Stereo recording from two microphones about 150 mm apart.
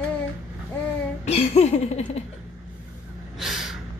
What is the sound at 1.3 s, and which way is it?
Laughter, 45° left (ahead or behind).